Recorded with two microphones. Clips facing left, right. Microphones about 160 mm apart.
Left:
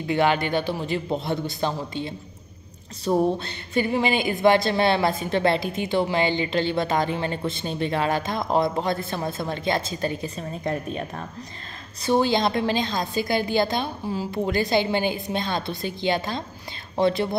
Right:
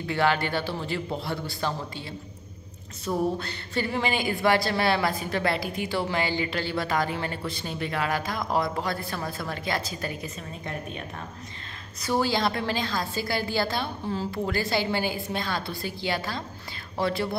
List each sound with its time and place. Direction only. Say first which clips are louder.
0.0 s a woman's voice: left 3 dB; 20° left (ahead or behind); by 11.1 s 40° left (ahead or behind)
12.0 s a woman's voice: left 4 dB; 20° left (ahead or behind)